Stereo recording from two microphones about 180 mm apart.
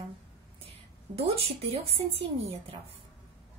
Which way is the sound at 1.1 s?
30° right (ahead or behind).